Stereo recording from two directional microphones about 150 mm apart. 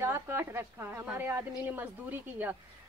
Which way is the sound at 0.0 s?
15° right (ahead or behind).